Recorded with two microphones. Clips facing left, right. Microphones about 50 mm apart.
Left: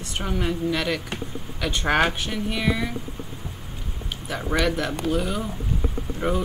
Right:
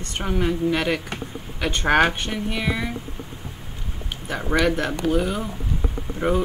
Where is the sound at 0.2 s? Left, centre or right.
Centre.